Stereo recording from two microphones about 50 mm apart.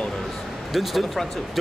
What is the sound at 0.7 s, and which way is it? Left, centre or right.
Speech, centre.